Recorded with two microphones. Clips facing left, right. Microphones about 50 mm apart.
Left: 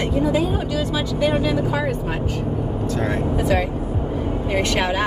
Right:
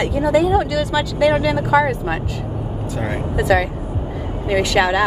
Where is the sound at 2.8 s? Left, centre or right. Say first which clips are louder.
Left 1 dB; centre.